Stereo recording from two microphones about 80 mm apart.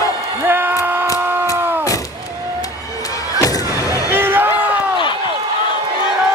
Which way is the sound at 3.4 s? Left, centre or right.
Left.